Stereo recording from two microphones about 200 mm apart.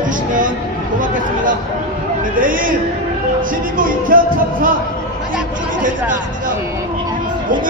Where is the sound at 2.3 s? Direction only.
45° right (ahead or behind).